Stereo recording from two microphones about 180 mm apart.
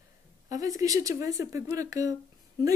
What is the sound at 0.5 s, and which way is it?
A woman's voice, 20° right (ahead or behind).